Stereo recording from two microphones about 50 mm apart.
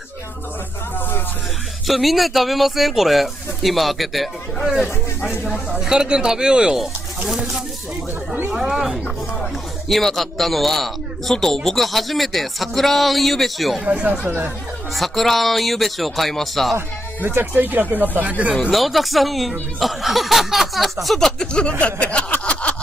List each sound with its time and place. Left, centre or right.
1.9 s speech: centre
8.5 s speech: centre
9.4 s speech: centre
13.8 s speech: right
15.0 s speech: centre
17.2 s speech: right
18.7 s speech: centre
22.4 s a sound: left